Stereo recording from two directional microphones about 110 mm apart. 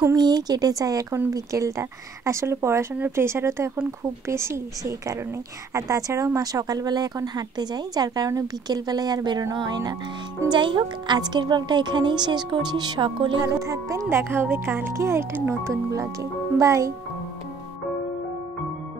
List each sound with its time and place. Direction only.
0.0 s a woman's voice: 35° right (ahead or behind)
13.4 s speech: 30° right (ahead or behind)